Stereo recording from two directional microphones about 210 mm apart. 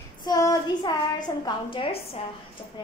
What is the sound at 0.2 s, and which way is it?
A woman's voice, 20° left (ahead or behind).